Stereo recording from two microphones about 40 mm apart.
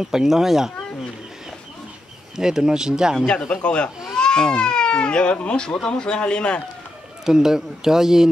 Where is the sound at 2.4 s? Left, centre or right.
Centre.